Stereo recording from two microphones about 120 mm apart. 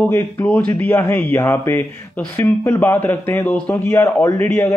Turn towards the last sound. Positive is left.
turn(degrees=20)  # may be behind; listen again after turning